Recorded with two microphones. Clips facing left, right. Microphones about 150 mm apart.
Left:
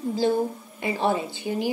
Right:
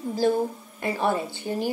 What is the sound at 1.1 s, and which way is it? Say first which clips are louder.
Speech: left 1 dB; 15° left (ahead or behind).